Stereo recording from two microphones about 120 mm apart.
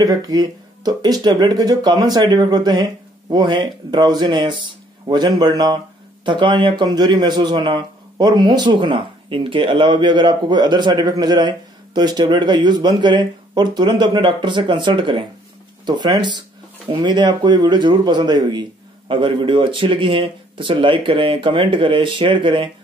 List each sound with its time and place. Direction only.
0.0 s a man's voice: 35° right (ahead or behind)